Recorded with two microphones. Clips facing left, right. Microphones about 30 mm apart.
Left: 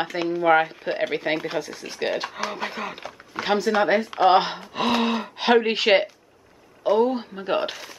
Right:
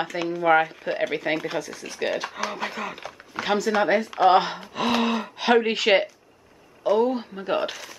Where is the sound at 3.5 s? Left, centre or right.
Centre.